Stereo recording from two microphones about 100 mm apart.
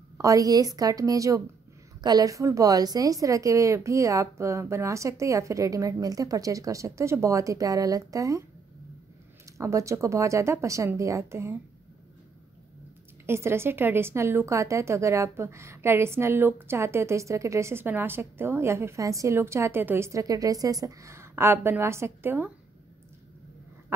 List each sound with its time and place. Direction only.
0.2 s a woman's voice: 35° right (ahead or behind)
9.6 s a woman's voice: 30° right (ahead or behind)
13.3 s a woman's voice: 25° right (ahead or behind)
20.1 s a woman's voice: 35° right (ahead or behind)